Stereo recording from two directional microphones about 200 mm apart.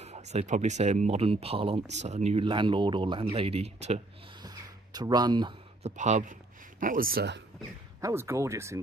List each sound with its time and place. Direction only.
0.0 s speech: 35° right (ahead or behind)
4.4 s a sound: 20° right (ahead or behind)
5.8 s speech: 35° right (ahead or behind); by 7.4 s 55° right (ahead or behind)
8.0 s speech: 15° right (ahead or behind)